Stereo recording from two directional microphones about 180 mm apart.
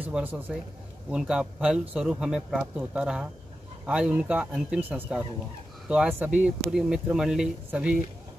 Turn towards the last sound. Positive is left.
turn(degrees=-5)  # may be behind; listen again after turning